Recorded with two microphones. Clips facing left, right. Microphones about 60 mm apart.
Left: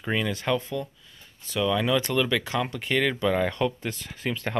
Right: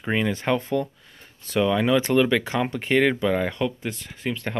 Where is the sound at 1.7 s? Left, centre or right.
Right.